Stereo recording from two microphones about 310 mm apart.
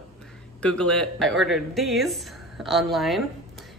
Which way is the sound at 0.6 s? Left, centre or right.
Centre.